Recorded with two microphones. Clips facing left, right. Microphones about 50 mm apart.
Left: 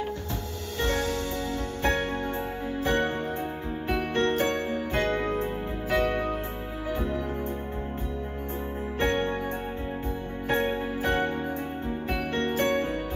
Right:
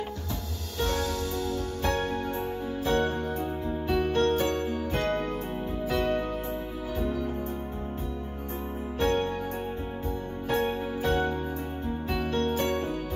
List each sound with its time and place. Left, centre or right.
0.7 s music: left
9.0 s music: left
10.5 s music: left